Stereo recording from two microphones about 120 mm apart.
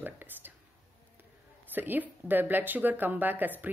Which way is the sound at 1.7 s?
15° right (ahead or behind).